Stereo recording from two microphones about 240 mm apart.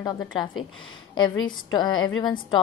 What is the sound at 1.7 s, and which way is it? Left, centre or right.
Speech, centre.